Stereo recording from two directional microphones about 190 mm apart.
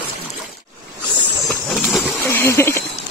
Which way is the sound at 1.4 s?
Centre (ahead or behind).